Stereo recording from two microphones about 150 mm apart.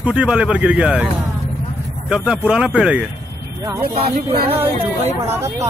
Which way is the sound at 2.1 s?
5° right (ahead or behind).